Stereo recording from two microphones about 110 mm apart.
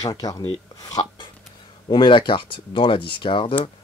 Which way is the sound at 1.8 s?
50° left (ahead or behind).